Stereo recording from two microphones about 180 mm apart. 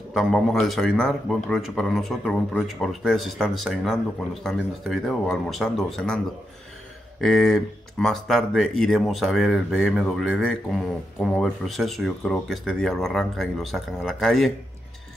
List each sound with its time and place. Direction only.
0.1 s speech: centre (ahead or behind)